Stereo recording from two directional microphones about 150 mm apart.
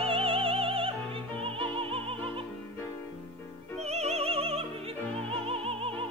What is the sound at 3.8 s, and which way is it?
Music, 45° right (ahead or behind).